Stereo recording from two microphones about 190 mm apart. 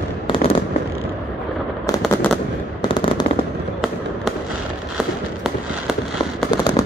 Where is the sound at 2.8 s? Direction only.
25° left (ahead or behind).